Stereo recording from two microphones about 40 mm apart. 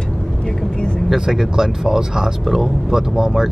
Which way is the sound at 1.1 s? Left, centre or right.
Centre.